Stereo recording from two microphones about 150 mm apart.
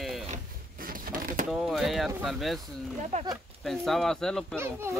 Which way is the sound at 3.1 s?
50° right (ahead or behind).